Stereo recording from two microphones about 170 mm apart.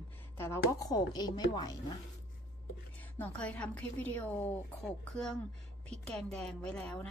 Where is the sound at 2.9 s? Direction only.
10° left (ahead or behind).